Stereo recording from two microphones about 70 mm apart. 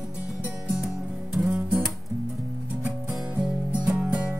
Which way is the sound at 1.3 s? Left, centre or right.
Centre.